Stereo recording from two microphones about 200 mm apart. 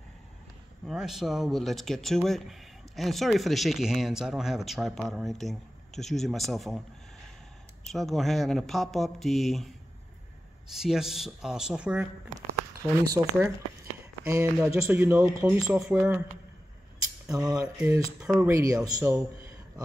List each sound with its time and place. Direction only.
0.8 s speech: centre (ahead or behind)
7.8 s speech: centre (ahead or behind)
10.7 s speech: centre (ahead or behind)
13.2 s speech: 20° right (ahead or behind)
18.2 s speech: 5° right (ahead or behind)
18.5 s speech: 15° right (ahead or behind)